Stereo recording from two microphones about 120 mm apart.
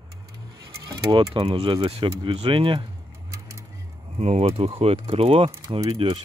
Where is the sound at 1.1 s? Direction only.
50° right (ahead or behind).